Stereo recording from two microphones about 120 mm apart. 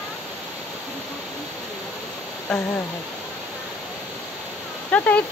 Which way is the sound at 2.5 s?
Centre (ahead or behind).